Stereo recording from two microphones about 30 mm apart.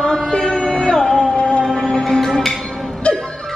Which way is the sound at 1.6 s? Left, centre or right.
Centre.